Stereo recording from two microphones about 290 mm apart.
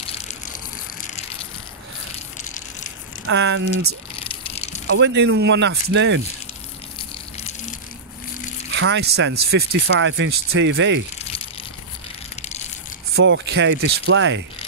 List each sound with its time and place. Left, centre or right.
3.3 s speech: right
4.2 s a sound: centre
4.9 s speech: right
7.3 s gush: left
8.7 s speech: right
12.4 s crushing: left
13.1 s speech: right